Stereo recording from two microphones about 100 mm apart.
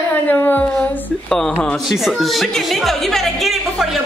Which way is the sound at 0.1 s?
20° left (ahead or behind).